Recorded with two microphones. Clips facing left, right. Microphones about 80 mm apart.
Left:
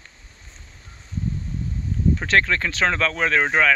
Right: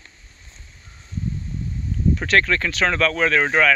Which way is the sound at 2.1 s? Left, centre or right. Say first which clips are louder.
Right 1 dB; left.